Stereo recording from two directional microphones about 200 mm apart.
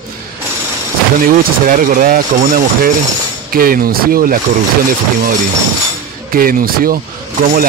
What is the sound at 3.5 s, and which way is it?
Speech, 45° right (ahead or behind).